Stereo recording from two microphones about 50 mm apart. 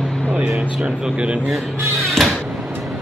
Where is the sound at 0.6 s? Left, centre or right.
Right.